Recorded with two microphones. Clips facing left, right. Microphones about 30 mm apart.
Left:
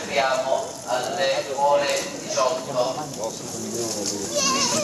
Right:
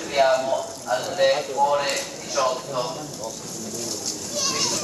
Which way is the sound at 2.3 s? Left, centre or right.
Centre.